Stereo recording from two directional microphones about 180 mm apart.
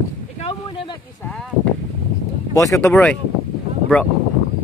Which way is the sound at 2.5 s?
15° left (ahead or behind).